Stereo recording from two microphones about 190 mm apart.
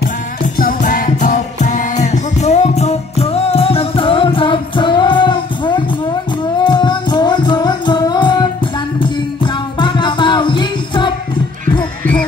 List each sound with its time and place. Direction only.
0.6 s music: 45° left (ahead or behind); by 11.1 s 25° left (ahead or behind)